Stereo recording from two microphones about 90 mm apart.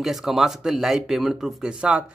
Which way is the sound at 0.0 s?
5° right (ahead or behind).